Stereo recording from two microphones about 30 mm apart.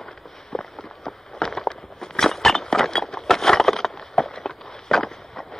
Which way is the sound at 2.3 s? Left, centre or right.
Centre.